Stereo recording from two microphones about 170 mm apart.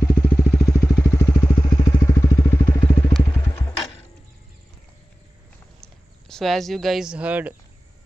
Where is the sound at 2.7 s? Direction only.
10° left (ahead or behind).